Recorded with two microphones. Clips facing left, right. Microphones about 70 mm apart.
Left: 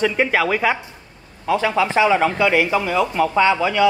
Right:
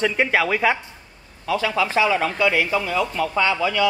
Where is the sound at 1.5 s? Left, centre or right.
Left.